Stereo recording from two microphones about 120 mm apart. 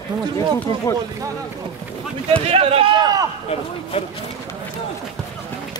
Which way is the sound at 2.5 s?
55° right (ahead or behind).